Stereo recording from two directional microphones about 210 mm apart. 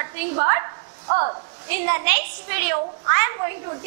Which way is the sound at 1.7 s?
15° right (ahead or behind).